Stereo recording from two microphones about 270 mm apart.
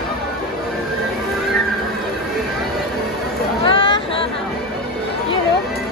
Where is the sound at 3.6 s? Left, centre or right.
Centre.